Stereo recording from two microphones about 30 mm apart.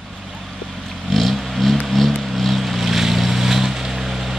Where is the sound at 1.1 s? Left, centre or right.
Centre.